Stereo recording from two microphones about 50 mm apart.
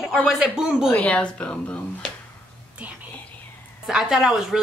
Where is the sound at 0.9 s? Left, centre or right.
Left.